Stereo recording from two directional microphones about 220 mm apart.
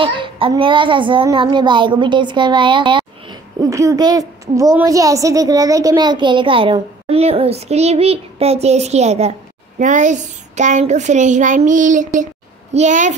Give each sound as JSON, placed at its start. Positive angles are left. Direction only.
{"t": 0.0, "sound": "a child's voice", "side_deg": -25}